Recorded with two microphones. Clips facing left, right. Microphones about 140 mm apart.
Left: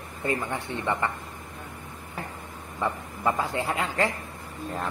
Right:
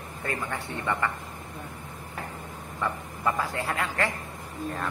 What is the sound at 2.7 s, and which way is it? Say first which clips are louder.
Speech: left 2 dB; 20° left (ahead or behind).